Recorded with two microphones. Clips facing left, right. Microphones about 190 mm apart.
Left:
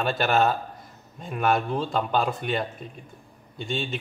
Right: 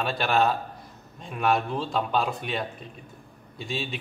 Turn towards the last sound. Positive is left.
turn(degrees=0)  # may be behind; listen again after turning